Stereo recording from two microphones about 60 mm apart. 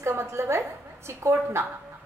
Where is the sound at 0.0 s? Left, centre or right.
Right.